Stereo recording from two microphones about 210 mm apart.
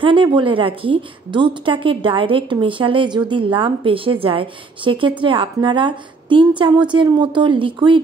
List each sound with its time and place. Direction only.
0.0 s a woman's voice: 25° right (ahead or behind)